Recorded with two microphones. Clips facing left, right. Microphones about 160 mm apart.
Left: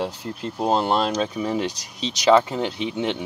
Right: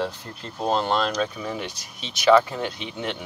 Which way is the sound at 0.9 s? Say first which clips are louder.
Left 2 dB; 25° left (ahead or behind).